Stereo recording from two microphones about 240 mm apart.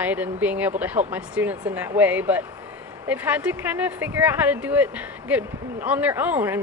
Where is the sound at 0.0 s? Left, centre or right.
Centre.